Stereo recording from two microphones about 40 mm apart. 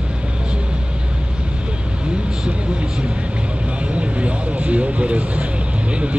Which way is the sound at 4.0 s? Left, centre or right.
Right.